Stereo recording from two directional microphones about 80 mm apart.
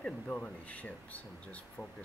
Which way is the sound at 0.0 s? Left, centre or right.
Centre.